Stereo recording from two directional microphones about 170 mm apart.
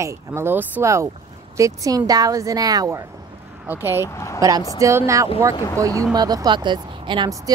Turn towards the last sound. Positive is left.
turn(degrees=-25)  # may be behind; listen again after turning